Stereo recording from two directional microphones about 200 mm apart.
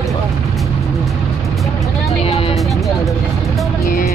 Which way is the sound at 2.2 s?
30° left (ahead or behind).